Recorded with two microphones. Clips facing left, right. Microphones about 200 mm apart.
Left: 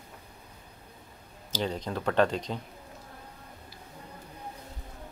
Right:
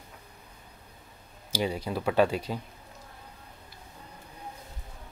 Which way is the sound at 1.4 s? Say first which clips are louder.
Right 2 dB; 10° right (ahead or behind).